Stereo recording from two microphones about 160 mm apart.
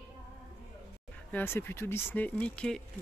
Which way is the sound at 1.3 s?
10° left (ahead or behind).